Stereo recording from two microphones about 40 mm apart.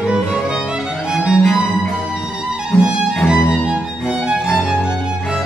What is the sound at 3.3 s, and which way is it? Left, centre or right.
Music, centre.